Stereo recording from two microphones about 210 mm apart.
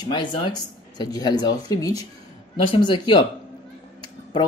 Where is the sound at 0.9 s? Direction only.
20° left (ahead or behind).